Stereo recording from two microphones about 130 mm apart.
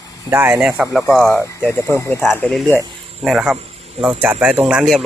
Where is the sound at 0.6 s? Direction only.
5° right (ahead or behind).